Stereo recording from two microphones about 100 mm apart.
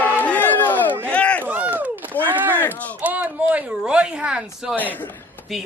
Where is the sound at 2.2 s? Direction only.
20° right (ahead or behind).